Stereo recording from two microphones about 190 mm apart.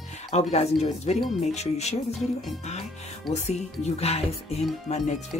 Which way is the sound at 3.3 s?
35° left (ahead or behind).